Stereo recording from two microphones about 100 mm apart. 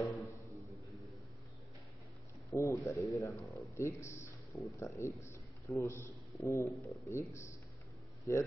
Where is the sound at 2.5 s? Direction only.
30° left (ahead or behind).